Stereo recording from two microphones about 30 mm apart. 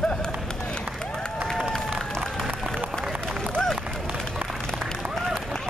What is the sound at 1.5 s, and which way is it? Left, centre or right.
Run, centre.